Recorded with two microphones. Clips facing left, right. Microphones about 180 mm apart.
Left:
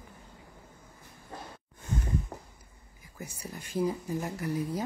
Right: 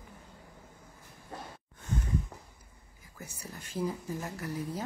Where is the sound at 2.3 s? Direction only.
45° left (ahead or behind).